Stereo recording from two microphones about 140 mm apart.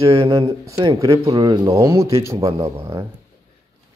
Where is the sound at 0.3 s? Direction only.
25° right (ahead or behind).